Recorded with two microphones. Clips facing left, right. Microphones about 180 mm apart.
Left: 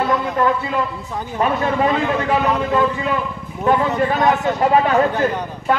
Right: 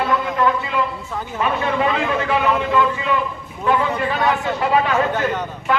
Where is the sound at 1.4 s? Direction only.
40° left (ahead or behind).